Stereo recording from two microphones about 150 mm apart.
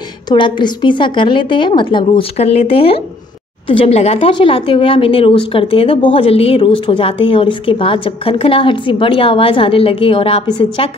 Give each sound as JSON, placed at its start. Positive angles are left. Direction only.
{"t": 0.3, "sound": "speech", "side_deg": 30}